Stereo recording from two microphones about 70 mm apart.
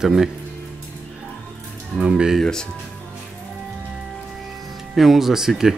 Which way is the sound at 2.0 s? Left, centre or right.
Centre.